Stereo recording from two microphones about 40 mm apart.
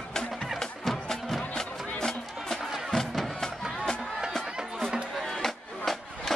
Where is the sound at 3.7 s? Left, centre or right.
Centre.